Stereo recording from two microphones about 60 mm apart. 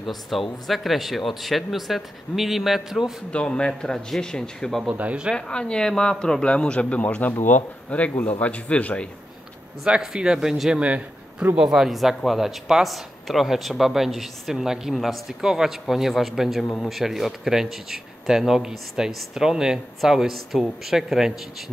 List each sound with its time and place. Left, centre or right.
0.0 s speech: centre
3.3 s a man's voice: centre
4.8 s speech: right
5.3 s a man's voice: centre
9.8 s a man's voice: centre
10.8 s speech: centre
11.5 s a man's voice: centre